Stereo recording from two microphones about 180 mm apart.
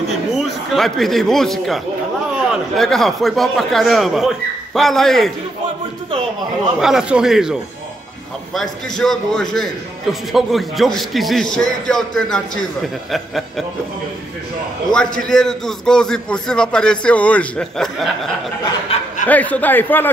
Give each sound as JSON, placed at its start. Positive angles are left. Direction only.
{"t": 0.3, "sound": "a man's voice", "side_deg": 0}
{"t": 2.8, "sound": "a man's voice", "side_deg": 0}
{"t": 6.8, "sound": "a man's voice", "side_deg": -5}
{"t": 8.5, "sound": "a man's voice", "side_deg": 0}
{"t": 14.9, "sound": "a man's voice", "side_deg": 5}
{"t": 18.9, "sound": "speech", "side_deg": 35}
{"t": 19.2, "sound": "a man's voice", "side_deg": 10}